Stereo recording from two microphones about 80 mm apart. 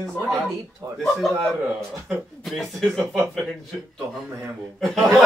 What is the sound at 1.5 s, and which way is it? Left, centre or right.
Speech, right.